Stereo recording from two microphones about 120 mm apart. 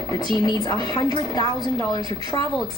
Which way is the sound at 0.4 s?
30° left (ahead or behind).